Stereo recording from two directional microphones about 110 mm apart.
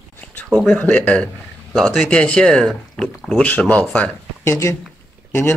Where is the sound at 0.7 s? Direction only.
15° left (ahead or behind).